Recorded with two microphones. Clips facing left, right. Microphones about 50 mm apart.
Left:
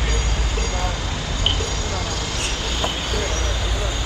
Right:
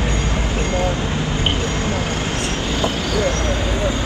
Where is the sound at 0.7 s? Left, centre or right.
Right.